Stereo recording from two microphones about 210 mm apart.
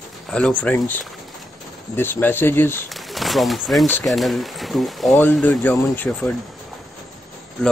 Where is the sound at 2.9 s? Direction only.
Centre (ahead or behind).